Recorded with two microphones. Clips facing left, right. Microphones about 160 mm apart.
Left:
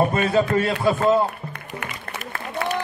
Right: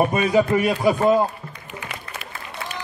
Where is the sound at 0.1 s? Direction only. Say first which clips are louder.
Right 1 dB; 15° right (ahead or behind).